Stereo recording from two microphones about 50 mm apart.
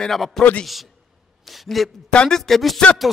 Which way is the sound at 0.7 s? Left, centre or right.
Centre.